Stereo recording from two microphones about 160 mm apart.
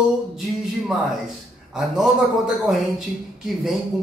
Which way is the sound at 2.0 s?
Centre (ahead or behind).